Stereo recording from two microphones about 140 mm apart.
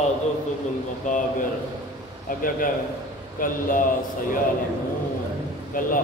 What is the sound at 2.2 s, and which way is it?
A man's voice, 80° left.